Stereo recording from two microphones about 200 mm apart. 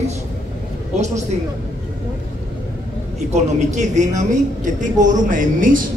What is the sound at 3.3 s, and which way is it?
A woman's voice, 35° right (ahead or behind).